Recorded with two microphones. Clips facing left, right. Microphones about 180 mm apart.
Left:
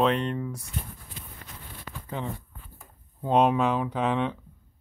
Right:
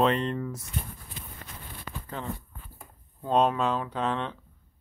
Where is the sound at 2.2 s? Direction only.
20° left (ahead or behind).